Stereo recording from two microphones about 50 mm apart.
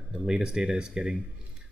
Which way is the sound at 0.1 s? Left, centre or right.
Centre.